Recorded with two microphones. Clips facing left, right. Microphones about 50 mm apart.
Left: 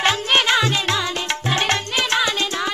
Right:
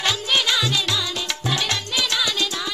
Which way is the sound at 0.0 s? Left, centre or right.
Left.